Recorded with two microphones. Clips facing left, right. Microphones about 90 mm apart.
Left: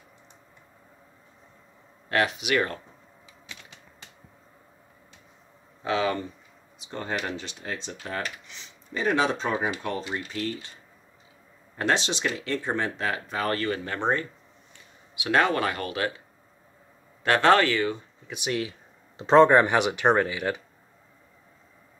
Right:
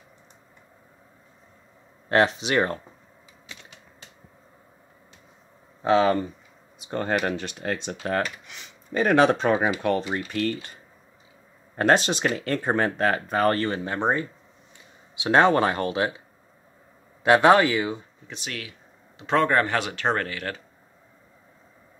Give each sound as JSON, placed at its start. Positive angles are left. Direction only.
{"t": 2.0, "sound": "speech", "side_deg": -30}
{"t": 5.8, "sound": "speech", "side_deg": -35}
{"t": 6.8, "sound": "speech", "side_deg": -60}
{"t": 11.7, "sound": "speech", "side_deg": -50}
{"t": 13.9, "sound": "speech", "side_deg": -15}
{"t": 15.1, "sound": "speech", "side_deg": -25}
{"t": 17.2, "sound": "speech", "side_deg": -15}
{"t": 18.3, "sound": "speech", "side_deg": 20}
{"t": 18.7, "sound": "speech", "side_deg": 30}